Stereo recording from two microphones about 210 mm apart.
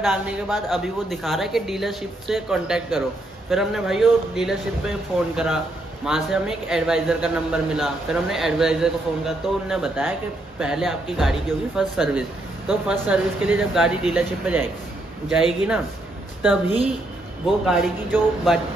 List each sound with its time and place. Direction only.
0.0 s a man's voice: 5° right (ahead or behind)
17.6 s a man's voice: 5° right (ahead or behind)